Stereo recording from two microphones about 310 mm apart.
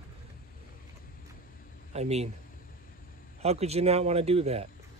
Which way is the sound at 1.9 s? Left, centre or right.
Right.